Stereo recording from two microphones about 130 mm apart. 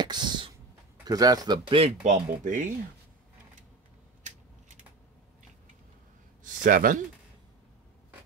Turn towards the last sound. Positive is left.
turn(degrees=-90)